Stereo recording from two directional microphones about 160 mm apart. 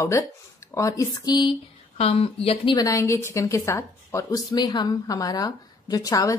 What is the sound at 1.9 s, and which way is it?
Speech, 40° left (ahead or behind).